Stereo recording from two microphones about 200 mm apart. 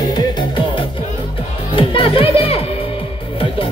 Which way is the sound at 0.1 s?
25° left (ahead or behind).